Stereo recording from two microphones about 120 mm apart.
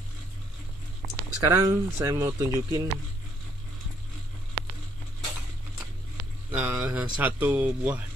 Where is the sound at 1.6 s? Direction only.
30° right (ahead or behind).